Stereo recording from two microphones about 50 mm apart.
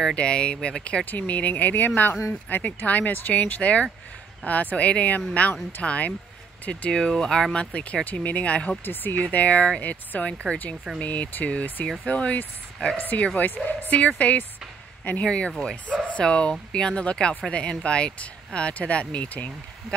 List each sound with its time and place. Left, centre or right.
0.1 s speech: left
1.0 s speech: left; by 7.4 s centre
7.5 s speech: left